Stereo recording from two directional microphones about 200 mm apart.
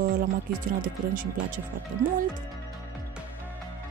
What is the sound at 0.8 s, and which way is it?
Speech, 45° right (ahead or behind).